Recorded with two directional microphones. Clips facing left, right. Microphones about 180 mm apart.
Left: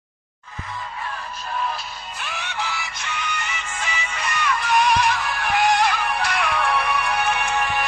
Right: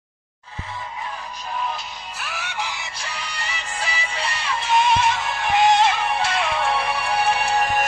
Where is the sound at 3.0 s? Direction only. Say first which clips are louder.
Left 3 dB; 35° right (ahead or behind).